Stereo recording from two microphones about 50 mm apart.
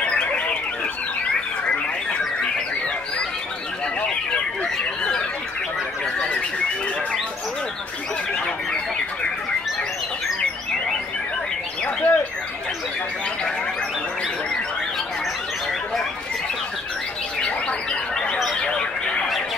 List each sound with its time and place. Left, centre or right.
0.0 s car alarm: left
11.8 s bird: left
17.4 s bird: centre
18.6 s a sound: centre